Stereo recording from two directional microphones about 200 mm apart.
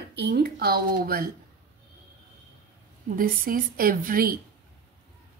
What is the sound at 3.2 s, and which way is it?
Speech, 45° right (ahead or behind).